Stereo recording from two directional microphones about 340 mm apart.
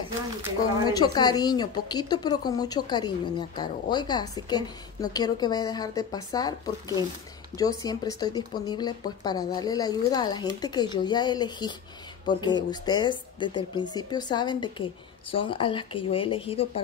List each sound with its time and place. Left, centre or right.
0.8 s speech: centre